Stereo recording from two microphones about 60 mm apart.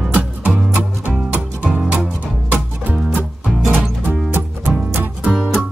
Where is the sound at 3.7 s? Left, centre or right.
Right.